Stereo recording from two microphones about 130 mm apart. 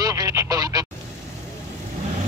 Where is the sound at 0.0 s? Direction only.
25° right (ahead or behind).